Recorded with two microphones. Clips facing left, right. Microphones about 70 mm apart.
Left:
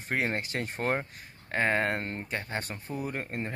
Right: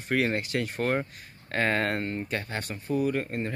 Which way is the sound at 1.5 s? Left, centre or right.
Centre.